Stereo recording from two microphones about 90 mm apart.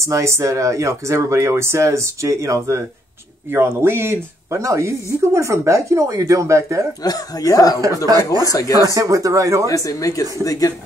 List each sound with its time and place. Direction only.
0.0 s speech: 35° right (ahead or behind)
7.0 s speech: 40° left (ahead or behind)
7.8 s speech: 40° right (ahead or behind)
8.4 s speech: 40° left (ahead or behind)
8.8 s speech: 40° right (ahead or behind)
9.7 s speech: 40° left (ahead or behind)